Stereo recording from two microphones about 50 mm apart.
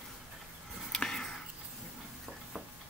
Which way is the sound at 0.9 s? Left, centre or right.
Centre.